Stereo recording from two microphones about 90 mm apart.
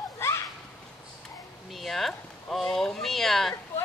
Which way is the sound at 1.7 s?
Centre (ahead or behind).